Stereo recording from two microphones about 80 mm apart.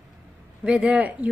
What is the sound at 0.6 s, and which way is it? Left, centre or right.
Speech, centre.